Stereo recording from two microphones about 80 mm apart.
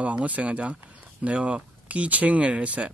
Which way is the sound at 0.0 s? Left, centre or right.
Centre.